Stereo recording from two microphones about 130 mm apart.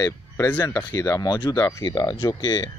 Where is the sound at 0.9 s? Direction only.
30° left (ahead or behind).